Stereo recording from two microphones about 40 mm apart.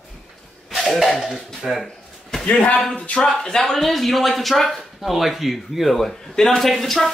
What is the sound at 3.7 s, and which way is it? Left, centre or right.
Speech, centre.